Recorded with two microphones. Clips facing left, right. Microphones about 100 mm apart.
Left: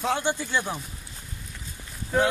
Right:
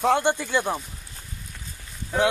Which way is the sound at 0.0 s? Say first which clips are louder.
Right 5 dB; 55° right (ahead or behind).